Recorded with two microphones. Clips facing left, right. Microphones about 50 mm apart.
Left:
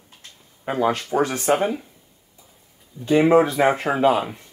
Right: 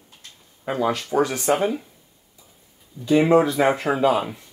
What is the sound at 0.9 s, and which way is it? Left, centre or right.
Speech, left.